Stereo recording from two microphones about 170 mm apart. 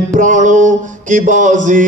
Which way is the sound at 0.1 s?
50° right (ahead or behind).